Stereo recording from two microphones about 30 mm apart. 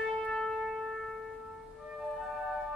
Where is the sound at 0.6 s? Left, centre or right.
Centre.